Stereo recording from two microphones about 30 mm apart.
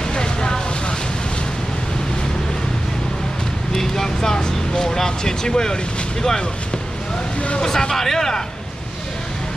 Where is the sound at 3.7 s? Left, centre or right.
Centre.